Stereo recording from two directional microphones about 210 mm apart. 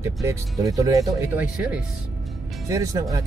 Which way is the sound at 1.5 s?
5° right (ahead or behind).